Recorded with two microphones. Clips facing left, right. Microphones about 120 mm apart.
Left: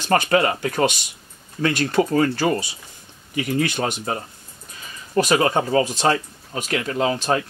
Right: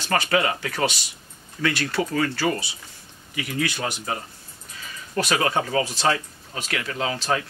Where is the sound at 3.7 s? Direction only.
55° left (ahead or behind).